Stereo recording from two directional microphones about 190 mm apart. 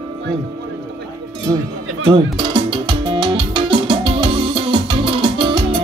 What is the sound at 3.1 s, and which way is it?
Music, 25° right (ahead or behind).